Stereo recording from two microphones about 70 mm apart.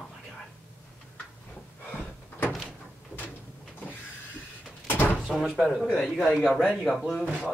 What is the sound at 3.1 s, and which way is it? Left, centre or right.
Sliding door, right.